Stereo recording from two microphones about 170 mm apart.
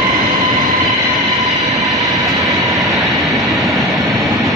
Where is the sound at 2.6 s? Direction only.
20° right (ahead or behind).